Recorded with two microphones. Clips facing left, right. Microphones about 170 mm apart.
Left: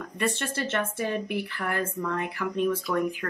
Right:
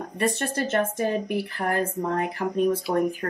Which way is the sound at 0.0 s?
40° right (ahead or behind).